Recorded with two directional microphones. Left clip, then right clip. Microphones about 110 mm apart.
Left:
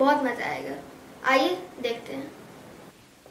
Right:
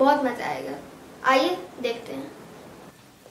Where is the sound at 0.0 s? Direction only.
Centre (ahead or behind).